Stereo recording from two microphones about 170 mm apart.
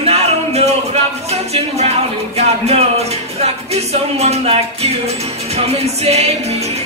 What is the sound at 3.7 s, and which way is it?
Speech, 40° right (ahead or behind).